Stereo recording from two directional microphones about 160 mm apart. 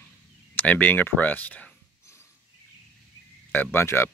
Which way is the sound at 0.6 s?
10° left (ahead or behind).